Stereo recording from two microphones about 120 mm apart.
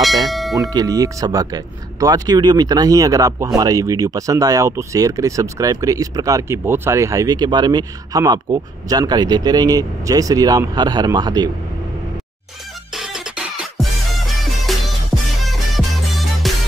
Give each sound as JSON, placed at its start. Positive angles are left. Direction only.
{"t": 0.3, "sound": "bell", "side_deg": 0}
{"t": 0.6, "sound": "speech", "side_deg": -30}
{"t": 12.9, "sound": "music", "side_deg": -5}